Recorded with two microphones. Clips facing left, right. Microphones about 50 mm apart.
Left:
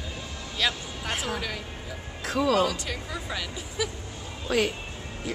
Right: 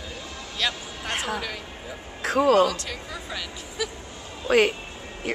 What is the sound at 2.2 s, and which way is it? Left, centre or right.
Speech, right.